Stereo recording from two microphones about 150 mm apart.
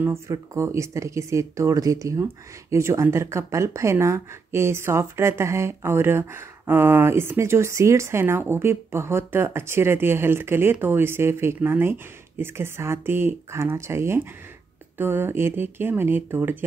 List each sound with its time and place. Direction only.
0.0 s speech: 20° right (ahead or behind)